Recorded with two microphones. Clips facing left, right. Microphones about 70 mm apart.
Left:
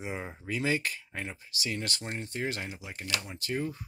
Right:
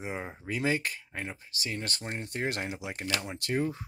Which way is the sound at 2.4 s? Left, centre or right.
Right.